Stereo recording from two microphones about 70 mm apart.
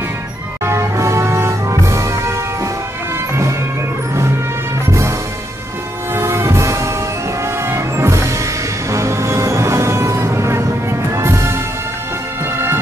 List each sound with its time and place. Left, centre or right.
0.7 s music: right
4.8 s music: right
6.1 s train: right
7.6 s music: right